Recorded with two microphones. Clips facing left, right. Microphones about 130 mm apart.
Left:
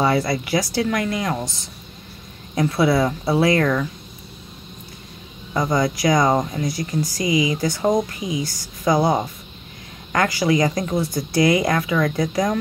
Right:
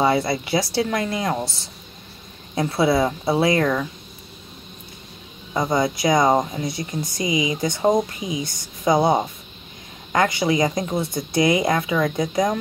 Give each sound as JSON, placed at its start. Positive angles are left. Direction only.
{"t": 0.0, "sound": "speech", "side_deg": -25}
{"t": 2.5, "sound": "speech", "side_deg": -25}
{"t": 5.5, "sound": "speech", "side_deg": -20}